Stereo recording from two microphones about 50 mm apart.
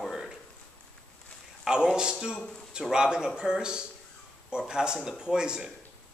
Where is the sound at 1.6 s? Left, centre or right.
Centre.